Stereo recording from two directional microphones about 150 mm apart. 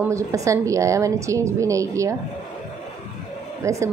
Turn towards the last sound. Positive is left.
turn(degrees=-20)  # may be behind; listen again after turning